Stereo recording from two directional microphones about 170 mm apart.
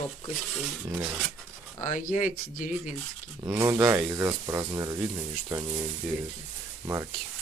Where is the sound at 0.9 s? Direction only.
5° right (ahead or behind).